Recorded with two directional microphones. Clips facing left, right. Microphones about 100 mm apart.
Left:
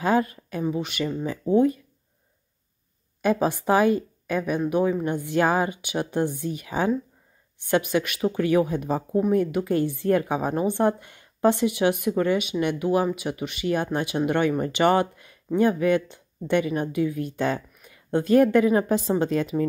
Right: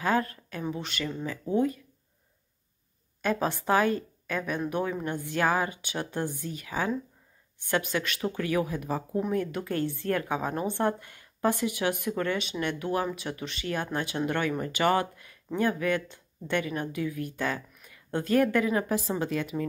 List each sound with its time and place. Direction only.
0.0 s a woman's voice: 15° left (ahead or behind)
3.2 s a woman's voice: 15° left (ahead or behind)
9.3 s a woman's voice: 15° left (ahead or behind); by 19.6 s 30° left (ahead or behind)